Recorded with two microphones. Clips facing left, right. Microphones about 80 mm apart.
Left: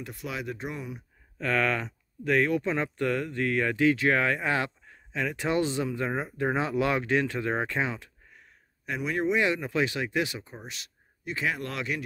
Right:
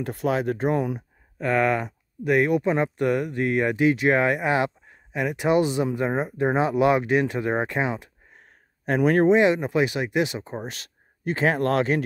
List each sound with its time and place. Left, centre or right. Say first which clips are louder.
0.0 s speech: right 11 dB; right
1.4 s speech: right 5 dB; centre
8.3 s a sound: right 3 dB; right
9.3 s speech: right 8 dB; right
10.4 s speech: right 10 dB; right